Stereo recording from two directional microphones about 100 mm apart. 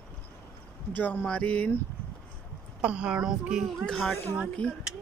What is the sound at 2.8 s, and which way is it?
A child's voice, 10° right (ahead or behind).